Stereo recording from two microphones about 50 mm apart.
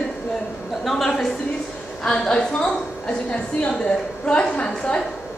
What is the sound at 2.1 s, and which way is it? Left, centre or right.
A woman's voice, centre.